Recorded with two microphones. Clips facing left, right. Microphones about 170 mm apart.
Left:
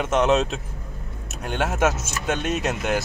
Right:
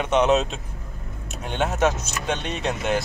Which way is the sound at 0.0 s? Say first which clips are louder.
Even; centre (ahead or behind).